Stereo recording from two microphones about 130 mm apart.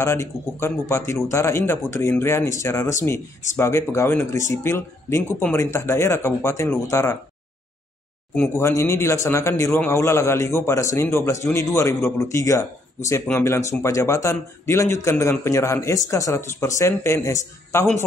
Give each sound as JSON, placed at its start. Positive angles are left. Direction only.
{"t": 0.0, "sound": "speech", "side_deg": 20}
{"t": 8.4, "sound": "speech", "side_deg": 20}